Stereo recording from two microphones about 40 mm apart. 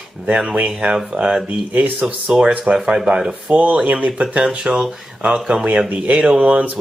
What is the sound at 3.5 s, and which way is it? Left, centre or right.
Speech, right.